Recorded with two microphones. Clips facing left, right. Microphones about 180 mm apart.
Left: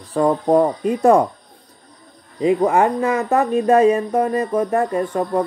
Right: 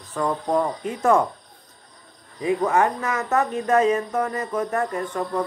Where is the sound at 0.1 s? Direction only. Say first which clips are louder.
Left 7 dB; 35° left (ahead or behind).